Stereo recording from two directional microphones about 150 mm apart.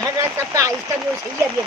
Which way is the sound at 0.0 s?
20° right (ahead or behind).